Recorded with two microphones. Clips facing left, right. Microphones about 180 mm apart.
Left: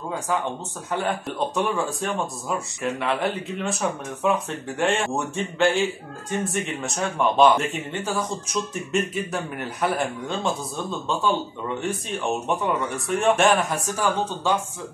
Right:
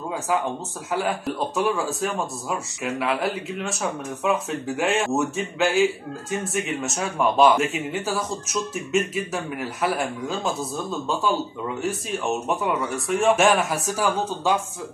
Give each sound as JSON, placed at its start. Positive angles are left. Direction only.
{"t": 0.9, "sound": "speech", "side_deg": -5}